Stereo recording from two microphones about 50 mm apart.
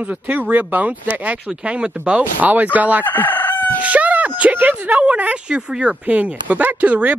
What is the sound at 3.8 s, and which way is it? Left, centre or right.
Speech, right.